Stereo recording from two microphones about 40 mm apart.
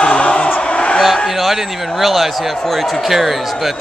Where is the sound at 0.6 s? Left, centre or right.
Left.